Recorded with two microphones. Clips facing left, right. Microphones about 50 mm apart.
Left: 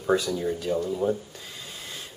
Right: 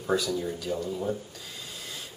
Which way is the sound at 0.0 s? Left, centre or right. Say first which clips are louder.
Left 3 dB; left.